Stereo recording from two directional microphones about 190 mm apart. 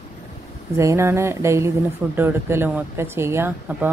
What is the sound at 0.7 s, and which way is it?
Speech, 15° right (ahead or behind).